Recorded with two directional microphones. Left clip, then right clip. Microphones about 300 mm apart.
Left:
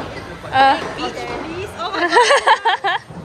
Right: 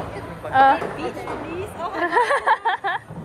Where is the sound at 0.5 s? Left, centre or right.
Centre.